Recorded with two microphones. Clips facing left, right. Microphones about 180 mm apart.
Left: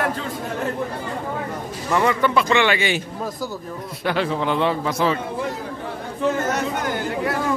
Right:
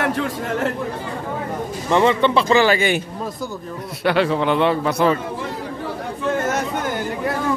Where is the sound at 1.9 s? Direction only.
25° right (ahead or behind); by 3.0 s 45° right (ahead or behind).